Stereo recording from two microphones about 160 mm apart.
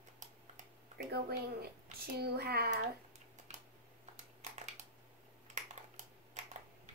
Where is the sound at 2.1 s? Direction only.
85° right.